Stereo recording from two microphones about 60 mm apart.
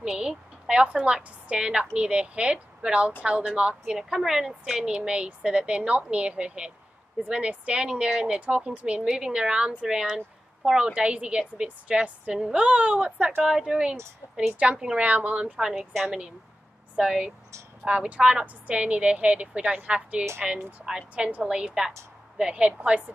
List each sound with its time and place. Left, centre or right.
0.0 s a woman's voice: centre
4.8 s a woman's voice: centre
13.4 s a woman's voice: centre
15.5 s speech: centre
16.9 s a woman's voice: centre